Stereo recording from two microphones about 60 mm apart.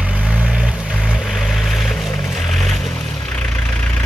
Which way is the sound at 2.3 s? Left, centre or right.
Centre.